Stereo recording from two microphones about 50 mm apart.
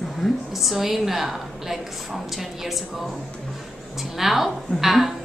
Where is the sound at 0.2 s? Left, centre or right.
Centre.